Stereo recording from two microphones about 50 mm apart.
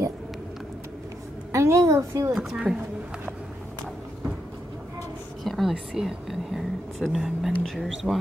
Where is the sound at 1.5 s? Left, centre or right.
Right.